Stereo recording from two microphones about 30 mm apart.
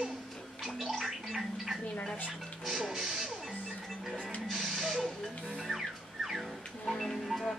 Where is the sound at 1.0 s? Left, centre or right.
Centre.